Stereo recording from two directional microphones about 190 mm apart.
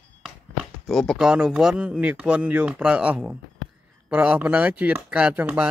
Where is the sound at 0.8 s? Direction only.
Centre (ahead or behind).